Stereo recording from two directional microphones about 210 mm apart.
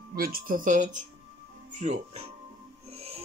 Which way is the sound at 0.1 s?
45° right (ahead or behind).